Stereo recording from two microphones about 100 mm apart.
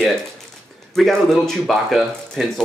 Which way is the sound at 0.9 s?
5° left (ahead or behind).